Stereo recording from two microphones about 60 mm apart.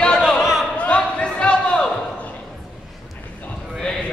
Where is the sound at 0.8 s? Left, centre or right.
Centre.